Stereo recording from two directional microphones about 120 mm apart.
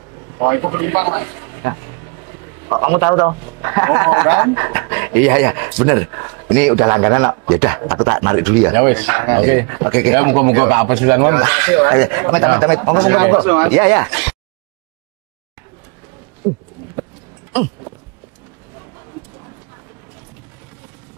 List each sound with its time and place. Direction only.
0.3 s speech: 25° right (ahead or behind)
16.4 s speech: 15° right (ahead or behind)